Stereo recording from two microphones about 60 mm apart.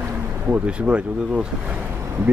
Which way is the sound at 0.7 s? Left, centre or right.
Centre.